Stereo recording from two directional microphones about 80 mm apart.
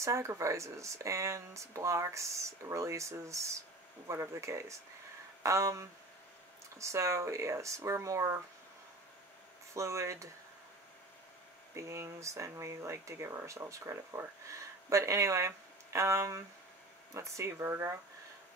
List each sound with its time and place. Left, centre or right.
0.0 s speech: right
9.8 s speech: right
11.7 s speech: right